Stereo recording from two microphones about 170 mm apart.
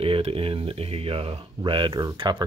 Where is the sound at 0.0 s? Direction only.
35° right (ahead or behind).